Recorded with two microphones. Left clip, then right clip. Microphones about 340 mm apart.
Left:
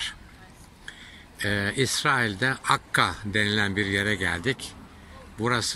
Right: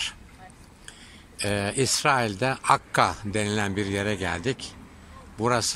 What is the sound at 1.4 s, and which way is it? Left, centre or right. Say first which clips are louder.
Speech: even; centre.